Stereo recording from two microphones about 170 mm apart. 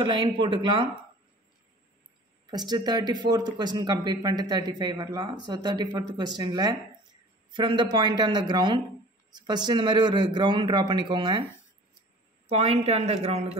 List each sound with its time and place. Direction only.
0.0 s speech: 30° right (ahead or behind)
2.5 s speech: 25° right (ahead or behind)
12.4 s a woman's voice: 35° right (ahead or behind)